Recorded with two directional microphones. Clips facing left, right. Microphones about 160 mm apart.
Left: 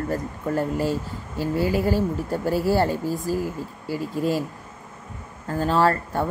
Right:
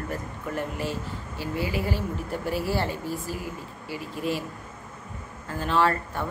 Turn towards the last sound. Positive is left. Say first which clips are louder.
# left 4 dB
turn(degrees=40)  # may be behind; listen again after turning